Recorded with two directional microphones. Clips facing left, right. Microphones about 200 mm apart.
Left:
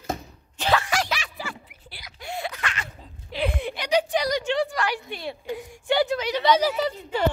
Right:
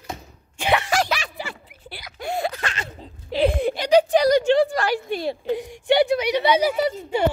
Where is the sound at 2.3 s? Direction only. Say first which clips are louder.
Right 5 dB; 40° right (ahead or behind).